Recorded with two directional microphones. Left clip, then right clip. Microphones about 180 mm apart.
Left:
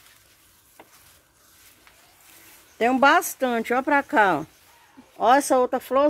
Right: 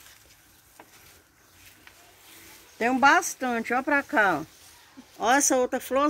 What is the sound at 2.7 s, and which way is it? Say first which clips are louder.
Speech: left 2 dB; 60° left (ahead or behind).